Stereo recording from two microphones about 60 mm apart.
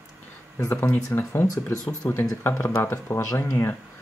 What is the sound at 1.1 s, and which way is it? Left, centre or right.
Speech, left.